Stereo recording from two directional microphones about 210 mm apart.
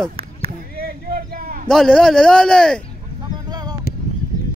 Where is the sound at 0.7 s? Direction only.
45° right (ahead or behind).